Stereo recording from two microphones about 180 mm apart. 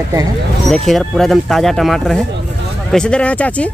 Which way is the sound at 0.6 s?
Centre (ahead or behind).